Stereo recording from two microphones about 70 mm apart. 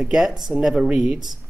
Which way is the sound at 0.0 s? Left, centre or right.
Centre.